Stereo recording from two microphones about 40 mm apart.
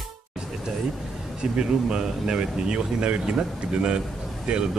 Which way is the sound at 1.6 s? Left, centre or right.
Centre.